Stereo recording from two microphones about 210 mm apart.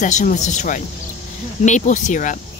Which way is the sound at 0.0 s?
35° left (ahead or behind).